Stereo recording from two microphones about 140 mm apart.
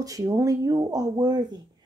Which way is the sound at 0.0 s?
25° right (ahead or behind).